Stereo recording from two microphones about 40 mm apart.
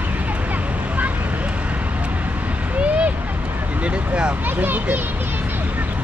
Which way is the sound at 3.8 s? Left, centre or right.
Right.